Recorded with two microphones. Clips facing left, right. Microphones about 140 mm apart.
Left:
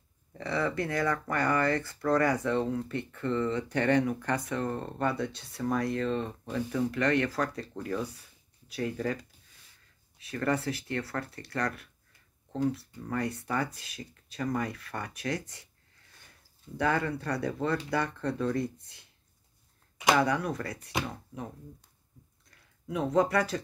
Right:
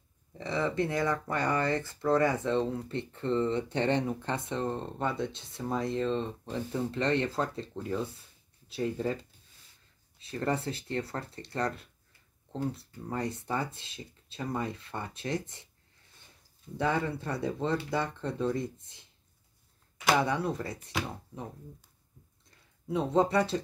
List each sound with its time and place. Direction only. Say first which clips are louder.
0.4 s speech: even; 25° right (ahead or behind)
10.3 s speech: left 2 dB; 30° right (ahead or behind)
13.1 s speech: left 1 dB; 30° right (ahead or behind)
16.7 s speech: left 1 dB; 25° right (ahead or behind)
20.2 s speech: left 1 dB; 25° right (ahead or behind)
22.8 s speech: even; 30° right (ahead or behind)